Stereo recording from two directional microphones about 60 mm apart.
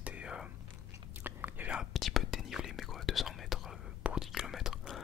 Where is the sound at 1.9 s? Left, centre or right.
Centre.